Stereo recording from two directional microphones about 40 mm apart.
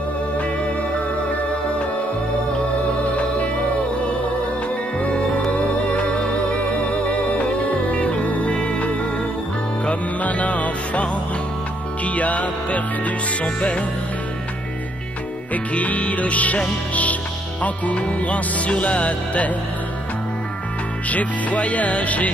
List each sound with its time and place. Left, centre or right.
3.0 s music: left
5.5 s music: left
15.5 s music: left
21.1 s music: left